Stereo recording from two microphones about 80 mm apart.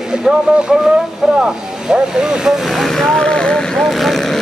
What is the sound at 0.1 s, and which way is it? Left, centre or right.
Vehicle, centre.